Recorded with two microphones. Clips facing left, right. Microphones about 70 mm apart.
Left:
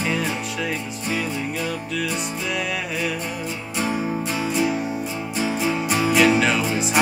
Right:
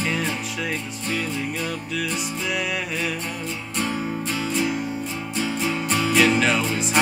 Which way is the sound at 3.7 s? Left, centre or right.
Centre.